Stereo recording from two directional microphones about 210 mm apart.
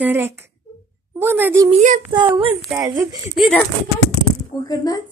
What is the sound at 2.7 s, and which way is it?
Speech, 15° right (ahead or behind).